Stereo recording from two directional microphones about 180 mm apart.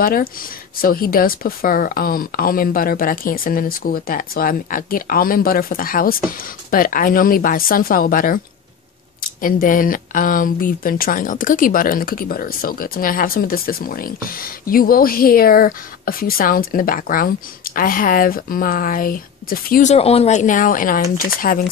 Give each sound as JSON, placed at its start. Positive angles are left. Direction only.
{"t": 0.0, "sound": "speech", "side_deg": 55}